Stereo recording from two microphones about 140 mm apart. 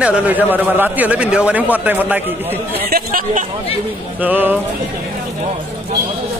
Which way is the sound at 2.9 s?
75° right (ahead or behind).